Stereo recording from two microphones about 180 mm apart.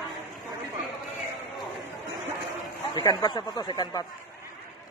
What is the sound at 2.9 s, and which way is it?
Speech, 25° left (ahead or behind).